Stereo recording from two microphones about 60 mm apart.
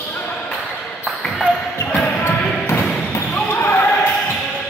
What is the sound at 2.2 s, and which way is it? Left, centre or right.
Basketball bounce, left.